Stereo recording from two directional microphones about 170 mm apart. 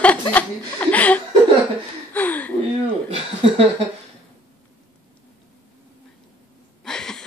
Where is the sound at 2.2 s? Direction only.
10° left (ahead or behind).